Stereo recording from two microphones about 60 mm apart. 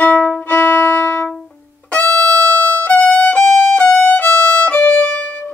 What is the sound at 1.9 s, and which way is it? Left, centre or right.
Music, left.